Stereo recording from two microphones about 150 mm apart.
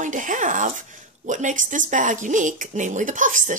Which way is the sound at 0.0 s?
60° right (ahead or behind).